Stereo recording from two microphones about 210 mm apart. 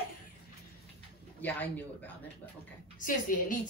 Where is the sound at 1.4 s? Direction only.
10° left (ahead or behind).